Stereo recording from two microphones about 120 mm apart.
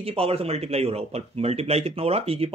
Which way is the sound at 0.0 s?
55° right (ahead or behind).